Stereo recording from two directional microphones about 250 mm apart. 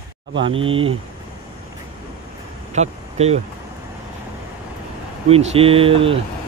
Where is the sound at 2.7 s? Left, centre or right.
Right.